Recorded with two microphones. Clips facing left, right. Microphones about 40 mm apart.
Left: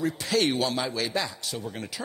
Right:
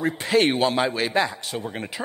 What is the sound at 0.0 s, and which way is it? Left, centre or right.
A man's voice, right.